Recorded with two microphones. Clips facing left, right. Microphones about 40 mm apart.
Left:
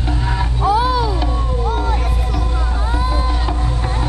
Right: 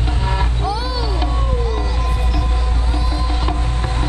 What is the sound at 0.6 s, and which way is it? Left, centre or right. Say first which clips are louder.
Music: left 7 dB; left.